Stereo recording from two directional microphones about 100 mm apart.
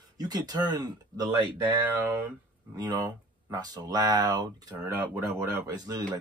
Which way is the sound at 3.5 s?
40° right (ahead or behind).